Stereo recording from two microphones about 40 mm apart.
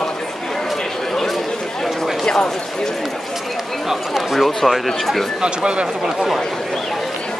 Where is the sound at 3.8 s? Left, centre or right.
Centre.